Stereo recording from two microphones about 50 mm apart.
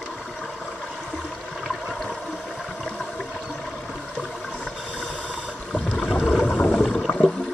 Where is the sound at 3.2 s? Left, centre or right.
Centre.